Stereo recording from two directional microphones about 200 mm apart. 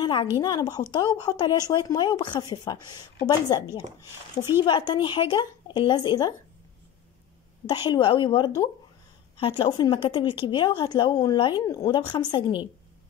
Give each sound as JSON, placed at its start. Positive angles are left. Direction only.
{"t": 0.0, "sound": "a woman's voice", "side_deg": 20}
{"t": 4.6, "sound": "a woman's voice", "side_deg": 20}
{"t": 7.6, "sound": "a woman's voice", "side_deg": 20}